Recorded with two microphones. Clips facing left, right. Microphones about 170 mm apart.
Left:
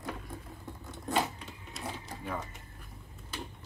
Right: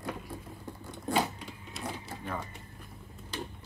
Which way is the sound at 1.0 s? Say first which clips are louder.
Right 1 dB; centre (ahead or behind).